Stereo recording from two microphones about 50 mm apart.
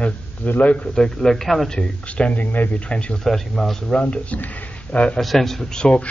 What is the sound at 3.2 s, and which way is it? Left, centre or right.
Speech, centre.